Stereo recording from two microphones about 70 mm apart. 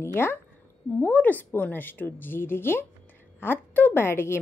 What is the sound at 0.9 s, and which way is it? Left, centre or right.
A woman's voice, left.